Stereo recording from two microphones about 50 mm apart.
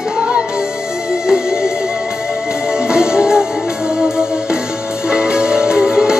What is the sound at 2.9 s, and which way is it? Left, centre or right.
Music, centre.